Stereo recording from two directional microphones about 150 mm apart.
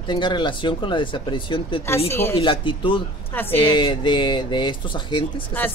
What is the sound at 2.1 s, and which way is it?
Speech, 15° left (ahead or behind).